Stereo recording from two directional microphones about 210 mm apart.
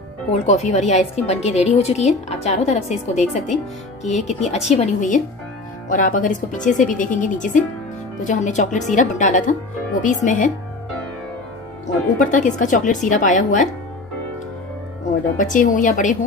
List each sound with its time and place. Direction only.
0.5 s a woman's voice: 35° left (ahead or behind)
12.2 s a woman's voice: 35° left (ahead or behind)
15.3 s a woman's voice: 35° left (ahead or behind)